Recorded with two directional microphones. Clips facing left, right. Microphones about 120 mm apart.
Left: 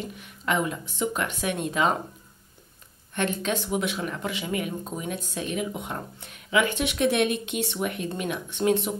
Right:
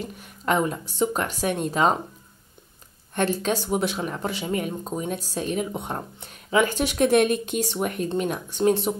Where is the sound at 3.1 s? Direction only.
35° right (ahead or behind).